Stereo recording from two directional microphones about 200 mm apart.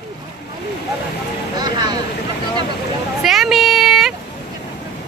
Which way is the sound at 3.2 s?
Centre (ahead or behind).